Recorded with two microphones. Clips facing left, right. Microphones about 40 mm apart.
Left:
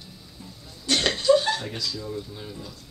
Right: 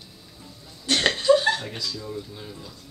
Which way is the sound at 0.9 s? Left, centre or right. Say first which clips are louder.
Right 1 dB; centre.